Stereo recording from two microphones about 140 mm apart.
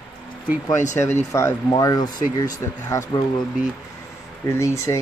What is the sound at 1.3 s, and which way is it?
Speech, 20° left (ahead or behind).